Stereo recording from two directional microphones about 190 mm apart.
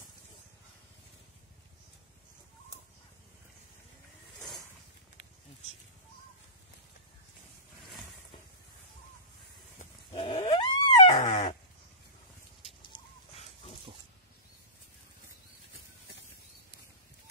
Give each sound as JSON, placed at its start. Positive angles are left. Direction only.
{"t": 10.1, "sound": "dog", "side_deg": 25}
{"t": 11.1, "sound": "dog", "side_deg": 40}
{"t": 12.9, "sound": "chicken", "side_deg": 25}